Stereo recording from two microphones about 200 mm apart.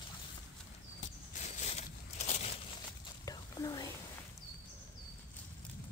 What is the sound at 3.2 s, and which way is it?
Whispering, 20° left (ahead or behind).